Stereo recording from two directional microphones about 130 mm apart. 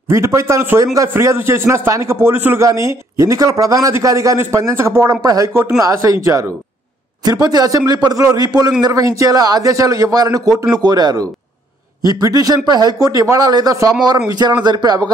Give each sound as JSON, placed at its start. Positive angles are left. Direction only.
{"t": 0.1, "sound": "a man's voice", "side_deg": -25}
{"t": 7.2, "sound": "a man's voice", "side_deg": -30}